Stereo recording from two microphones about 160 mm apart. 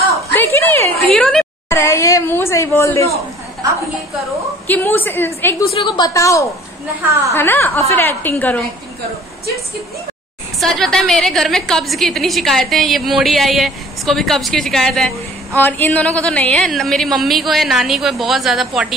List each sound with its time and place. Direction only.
0.3 s a sound: 15° left (ahead or behind)
1.7 s speech: 15° left (ahead or behind)
4.6 s a woman's voice: 10° left (ahead or behind)
5.7 s a woman's voice: 30° left (ahead or behind); by 8.6 s 10° left (ahead or behind)
10.6 s a woman's voice: 5° left (ahead or behind)